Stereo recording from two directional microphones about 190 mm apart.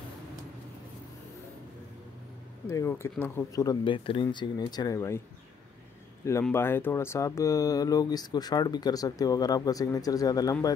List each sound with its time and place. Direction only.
2.7 s speech: 15° left (ahead or behind)
6.4 s speech: 10° left (ahead or behind)